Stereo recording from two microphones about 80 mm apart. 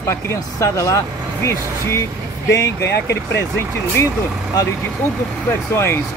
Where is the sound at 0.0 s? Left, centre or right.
Left.